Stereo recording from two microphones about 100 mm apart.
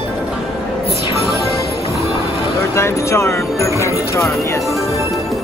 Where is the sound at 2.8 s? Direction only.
25° left (ahead or behind).